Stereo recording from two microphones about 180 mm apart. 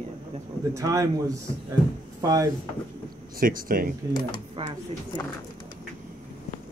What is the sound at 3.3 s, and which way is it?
Speech, 50° right (ahead or behind).